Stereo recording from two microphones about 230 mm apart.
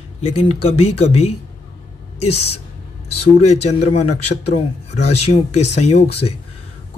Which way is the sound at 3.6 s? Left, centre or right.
Left.